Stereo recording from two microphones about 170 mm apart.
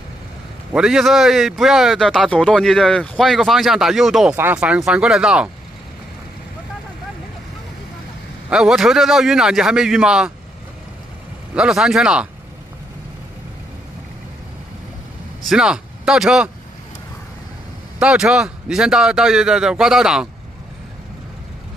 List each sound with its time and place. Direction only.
0.7 s a man's voice: 5° right (ahead or behind)
8.5 s a man's voice: 5° right (ahead or behind)
11.5 s a man's voice: 5° right (ahead or behind)
15.4 s speech: 5° right (ahead or behind)
17.9 s a man's voice: 5° right (ahead or behind)